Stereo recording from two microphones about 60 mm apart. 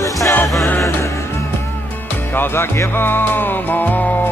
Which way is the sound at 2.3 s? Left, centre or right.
Left.